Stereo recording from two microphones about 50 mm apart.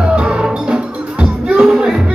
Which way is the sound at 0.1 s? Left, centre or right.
Centre.